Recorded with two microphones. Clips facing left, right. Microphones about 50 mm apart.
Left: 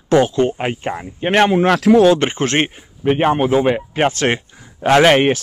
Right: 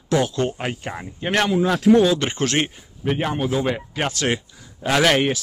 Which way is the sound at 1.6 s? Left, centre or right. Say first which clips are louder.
Left 1 dB; left.